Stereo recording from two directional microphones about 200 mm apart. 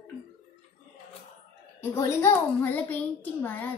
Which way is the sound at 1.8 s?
15° left (ahead or behind).